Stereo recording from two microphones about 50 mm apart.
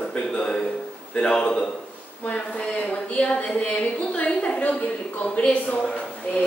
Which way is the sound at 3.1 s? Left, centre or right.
Left.